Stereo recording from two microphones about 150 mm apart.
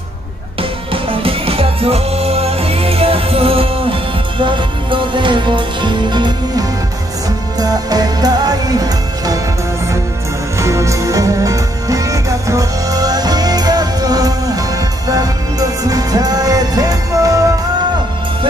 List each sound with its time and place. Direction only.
0.6 s music: 35° right (ahead or behind)
10.6 s music: 20° right (ahead or behind)